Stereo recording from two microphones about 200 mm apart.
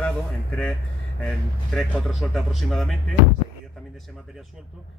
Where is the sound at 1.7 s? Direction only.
Centre (ahead or behind).